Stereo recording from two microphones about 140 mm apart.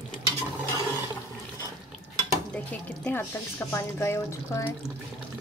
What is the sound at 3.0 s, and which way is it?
Speech, 15° left (ahead or behind).